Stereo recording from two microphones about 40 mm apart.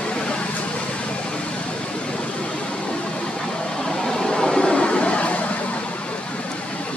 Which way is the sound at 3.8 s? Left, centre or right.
Centre.